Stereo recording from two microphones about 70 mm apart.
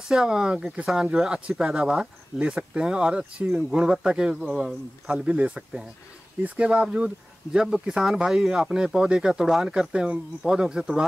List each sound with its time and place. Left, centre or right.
0.1 s speech: centre